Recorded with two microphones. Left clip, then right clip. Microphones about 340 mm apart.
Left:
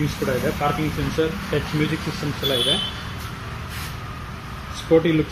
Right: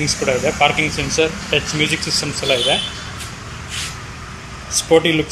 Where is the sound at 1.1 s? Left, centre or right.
Right.